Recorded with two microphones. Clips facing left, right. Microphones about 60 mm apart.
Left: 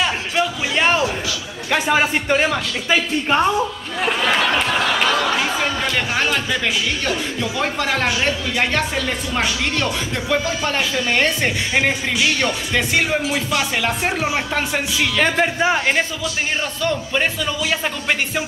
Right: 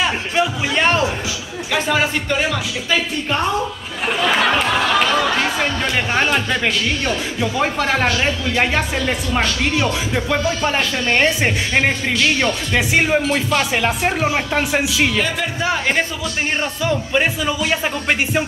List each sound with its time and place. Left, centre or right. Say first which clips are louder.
0.0 s music: right 1 dB; centre
1.7 s speech: left 1 dB; centre
4.6 s a sound: right 2 dB; centre
7.1 s speech: right 1 dB; centre
12.7 s speech: right 3 dB; centre
13.2 s music: right 3 dB; centre
14.3 s speech: right 2 dB; centre
15.6 s a man's voice: right 1 dB; centre
16.8 s speech: right 2 dB; centre